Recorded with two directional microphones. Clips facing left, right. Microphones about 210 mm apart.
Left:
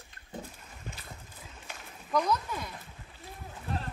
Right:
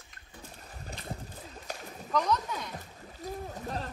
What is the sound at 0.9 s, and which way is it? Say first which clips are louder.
Boat: right 1 dB; 35° right (ahead or behind).